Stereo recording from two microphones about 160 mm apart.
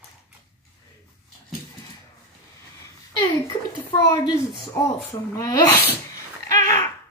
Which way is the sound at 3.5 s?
25° left (ahead or behind).